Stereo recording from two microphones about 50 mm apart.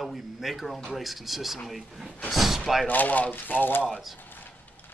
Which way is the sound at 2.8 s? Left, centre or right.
Left.